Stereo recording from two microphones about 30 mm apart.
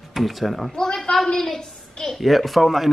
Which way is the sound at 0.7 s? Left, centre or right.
Centre.